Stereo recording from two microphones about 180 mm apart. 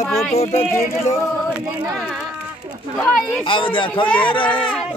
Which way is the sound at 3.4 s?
30° left (ahead or behind).